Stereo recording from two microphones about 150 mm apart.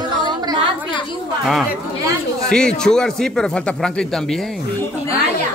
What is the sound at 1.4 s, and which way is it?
Speech, centre (ahead or behind).